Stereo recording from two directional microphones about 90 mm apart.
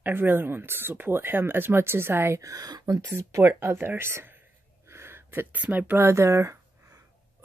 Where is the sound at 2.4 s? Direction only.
40° right (ahead or behind).